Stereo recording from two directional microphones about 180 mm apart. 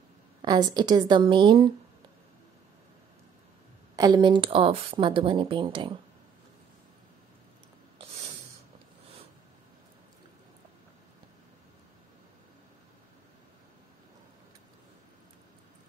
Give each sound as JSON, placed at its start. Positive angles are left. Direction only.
{"t": 0.4, "sound": "speech", "side_deg": -25}
{"t": 3.9, "sound": "speech", "side_deg": -25}